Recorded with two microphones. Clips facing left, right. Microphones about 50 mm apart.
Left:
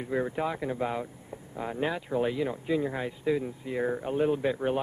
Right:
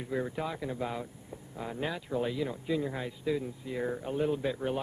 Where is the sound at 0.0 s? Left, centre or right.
Centre.